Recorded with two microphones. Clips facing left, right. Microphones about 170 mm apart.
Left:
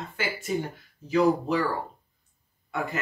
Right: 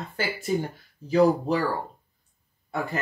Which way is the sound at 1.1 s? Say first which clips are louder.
Right 2 dB; 35° right (ahead or behind).